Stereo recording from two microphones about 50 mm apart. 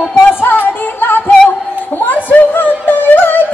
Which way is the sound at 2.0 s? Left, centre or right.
Left.